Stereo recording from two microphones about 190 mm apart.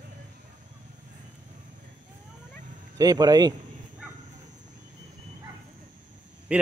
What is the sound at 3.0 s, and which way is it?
Speech, 20° right (ahead or behind).